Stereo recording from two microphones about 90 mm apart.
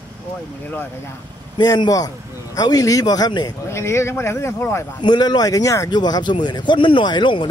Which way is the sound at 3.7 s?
30° left (ahead or behind).